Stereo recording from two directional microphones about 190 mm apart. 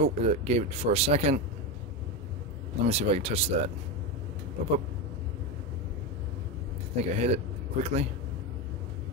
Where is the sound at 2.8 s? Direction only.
35° right (ahead or behind).